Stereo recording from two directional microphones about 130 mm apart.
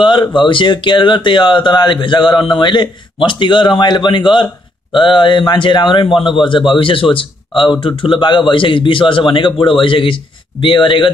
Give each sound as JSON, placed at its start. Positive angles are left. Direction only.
{"t": 0.0, "sound": "speech", "side_deg": 35}